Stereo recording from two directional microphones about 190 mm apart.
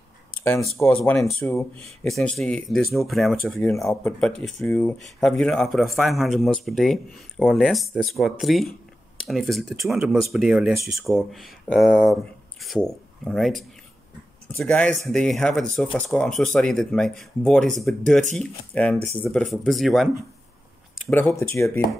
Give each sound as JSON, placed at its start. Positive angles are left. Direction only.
{"t": 0.7, "sound": "speech", "side_deg": 10}
{"t": 21.1, "sound": "speech", "side_deg": 10}